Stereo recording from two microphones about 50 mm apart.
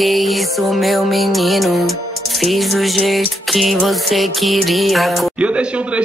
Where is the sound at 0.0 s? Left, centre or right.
Centre.